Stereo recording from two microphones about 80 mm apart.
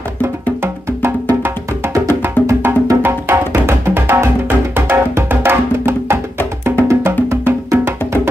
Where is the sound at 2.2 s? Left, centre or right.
Right.